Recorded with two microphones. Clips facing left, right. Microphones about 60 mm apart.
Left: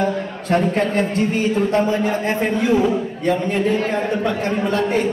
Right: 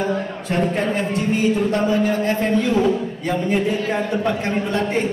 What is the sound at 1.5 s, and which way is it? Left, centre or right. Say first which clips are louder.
Speech: left 1 dB; left.